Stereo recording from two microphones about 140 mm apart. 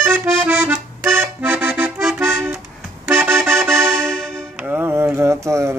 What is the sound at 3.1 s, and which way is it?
Music, 15° right (ahead or behind).